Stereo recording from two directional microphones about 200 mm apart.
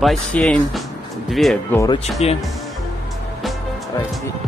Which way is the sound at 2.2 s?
30° left (ahead or behind).